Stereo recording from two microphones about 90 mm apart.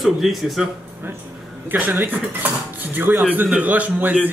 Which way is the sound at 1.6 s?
20° right (ahead or behind).